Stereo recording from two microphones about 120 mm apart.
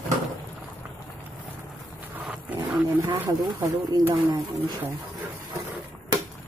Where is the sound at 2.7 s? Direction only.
15° right (ahead or behind).